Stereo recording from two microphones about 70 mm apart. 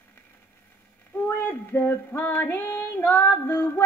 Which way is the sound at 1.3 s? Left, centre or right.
Left.